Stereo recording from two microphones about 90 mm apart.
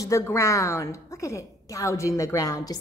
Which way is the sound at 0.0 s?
30° left (ahead or behind).